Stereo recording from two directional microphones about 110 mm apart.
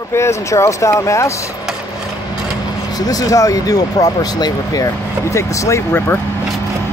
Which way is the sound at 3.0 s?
35° left (ahead or behind).